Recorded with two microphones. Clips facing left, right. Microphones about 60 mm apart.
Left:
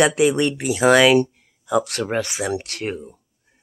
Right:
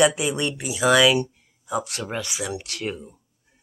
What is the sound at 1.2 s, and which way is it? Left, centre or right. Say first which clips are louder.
Speech: left 6 dB; left.